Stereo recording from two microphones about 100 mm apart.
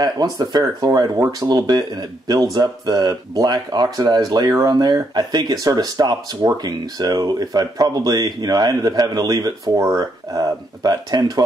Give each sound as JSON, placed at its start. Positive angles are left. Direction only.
{"t": 0.0, "sound": "speech", "side_deg": -40}